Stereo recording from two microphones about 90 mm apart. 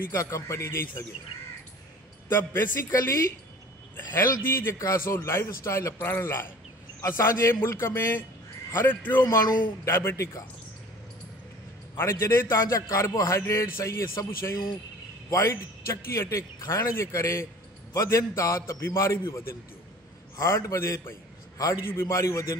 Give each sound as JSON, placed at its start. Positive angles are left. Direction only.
{"t": 0.1, "sound": "a man's voice", "side_deg": 35}
{"t": 2.2, "sound": "a man's voice", "side_deg": 25}
{"t": 2.9, "sound": "a man's voice", "side_deg": 35}
{"t": 3.9, "sound": "a man's voice", "side_deg": 25}
{"t": 12.0, "sound": "a man's voice", "side_deg": 30}